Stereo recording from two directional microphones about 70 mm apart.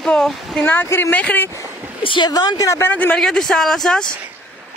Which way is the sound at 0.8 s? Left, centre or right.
Left.